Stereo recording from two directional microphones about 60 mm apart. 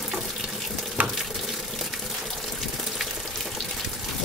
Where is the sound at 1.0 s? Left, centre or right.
Right.